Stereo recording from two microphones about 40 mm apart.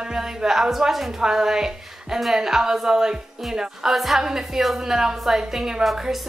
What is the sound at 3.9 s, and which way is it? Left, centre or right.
A woman's voice, centre.